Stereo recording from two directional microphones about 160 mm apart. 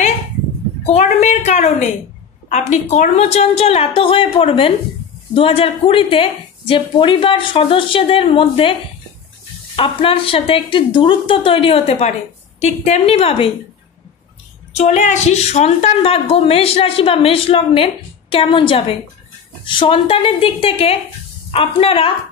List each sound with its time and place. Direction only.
0.8 s a woman's voice: 45° left (ahead or behind)
9.8 s a woman's voice: 35° left (ahead or behind)
14.8 s a woman's voice: 45° left (ahead or behind)